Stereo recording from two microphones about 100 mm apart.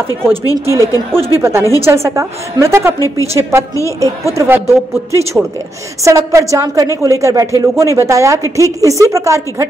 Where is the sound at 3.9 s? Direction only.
35° right (ahead or behind).